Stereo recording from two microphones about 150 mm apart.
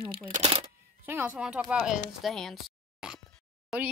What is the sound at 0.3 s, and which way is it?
Shuffling cards, 45° right (ahead or behind).